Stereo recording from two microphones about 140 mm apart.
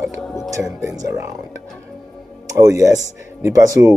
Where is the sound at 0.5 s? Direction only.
25° right (ahead or behind).